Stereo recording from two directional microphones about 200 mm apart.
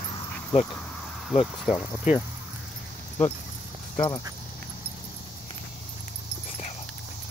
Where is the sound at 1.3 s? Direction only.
Centre (ahead or behind).